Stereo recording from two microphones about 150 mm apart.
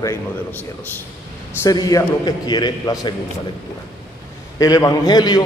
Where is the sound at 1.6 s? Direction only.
25° left (ahead or behind).